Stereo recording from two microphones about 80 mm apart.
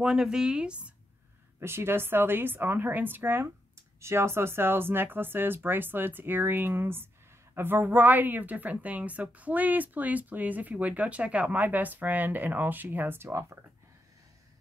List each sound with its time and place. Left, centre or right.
0.0 s speech: centre
1.6 s a woman's voice: right